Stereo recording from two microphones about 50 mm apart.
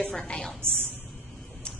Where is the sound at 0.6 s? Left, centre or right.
Right.